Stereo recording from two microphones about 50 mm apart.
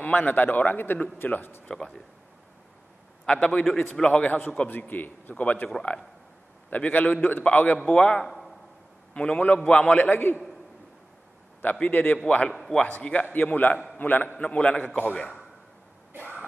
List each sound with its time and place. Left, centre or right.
0.0 s a man's voice: left
1.7 s a man's voice: centre
3.3 s a man's voice: centre
4.6 s a man's voice: left
6.7 s a man's voice: left
8.2 s a sound: centre
9.1 s a man's voice: left
11.9 s a man's voice: left